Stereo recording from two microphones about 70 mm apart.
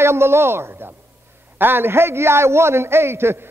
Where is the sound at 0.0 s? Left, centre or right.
Right.